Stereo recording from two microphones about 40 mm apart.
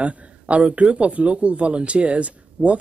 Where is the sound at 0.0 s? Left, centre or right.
Right.